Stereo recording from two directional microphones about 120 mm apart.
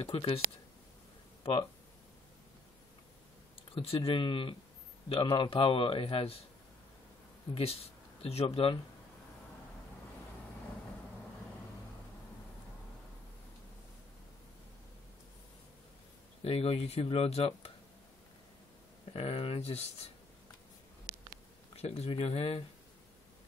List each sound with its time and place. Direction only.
0.0 s a man's voice: 50° left (ahead or behind)
1.4 s speech: 45° left (ahead or behind)
3.7 s a man's voice: 50° left (ahead or behind)
7.5 s speech: 55° left (ahead or behind)
16.4 s speech: 55° left (ahead or behind)
19.1 s a man's voice: 50° left (ahead or behind)
21.7 s speech: 60° left (ahead or behind)